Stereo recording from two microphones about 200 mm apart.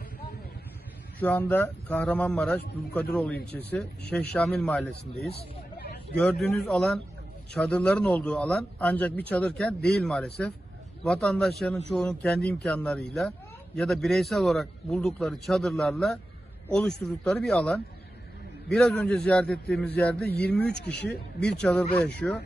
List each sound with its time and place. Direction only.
1.2 s speech: 10° left (ahead or behind)
20.2 s speech: 55° left (ahead or behind)
21.5 s speech: 5° left (ahead or behind)